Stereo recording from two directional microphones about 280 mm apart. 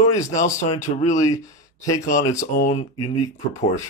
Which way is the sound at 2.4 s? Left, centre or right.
Left.